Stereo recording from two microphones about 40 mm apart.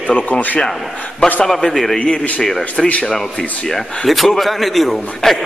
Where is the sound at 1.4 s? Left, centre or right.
Centre.